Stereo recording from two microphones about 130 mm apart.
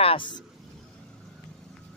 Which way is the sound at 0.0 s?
40° left (ahead or behind).